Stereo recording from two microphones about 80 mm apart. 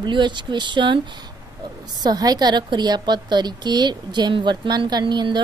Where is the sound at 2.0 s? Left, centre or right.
Right.